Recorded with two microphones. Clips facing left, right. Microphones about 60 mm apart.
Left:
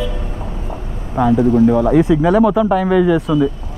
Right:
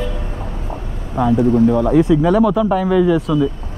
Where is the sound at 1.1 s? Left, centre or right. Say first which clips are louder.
Left 1 dB; left.